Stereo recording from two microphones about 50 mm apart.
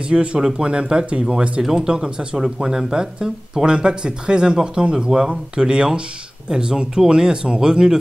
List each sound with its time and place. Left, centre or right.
0.1 s speech: right